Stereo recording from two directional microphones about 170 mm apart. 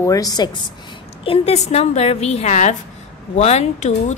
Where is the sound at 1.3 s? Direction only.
40° left (ahead or behind).